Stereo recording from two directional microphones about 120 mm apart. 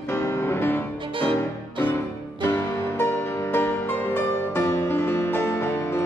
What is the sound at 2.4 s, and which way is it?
Music, 20° left (ahead or behind).